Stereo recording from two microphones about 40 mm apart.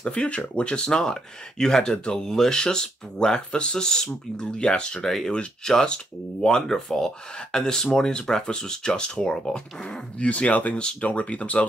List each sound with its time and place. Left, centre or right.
0.0 s speech: left
10.1 s speech: left